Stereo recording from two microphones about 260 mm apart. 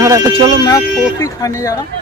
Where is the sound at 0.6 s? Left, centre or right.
Centre.